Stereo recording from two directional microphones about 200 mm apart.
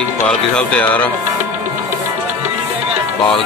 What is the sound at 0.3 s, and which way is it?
Speech, 5° left (ahead or behind).